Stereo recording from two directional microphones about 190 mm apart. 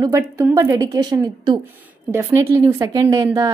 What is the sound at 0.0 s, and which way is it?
A woman's voice, 15° right (ahead or behind).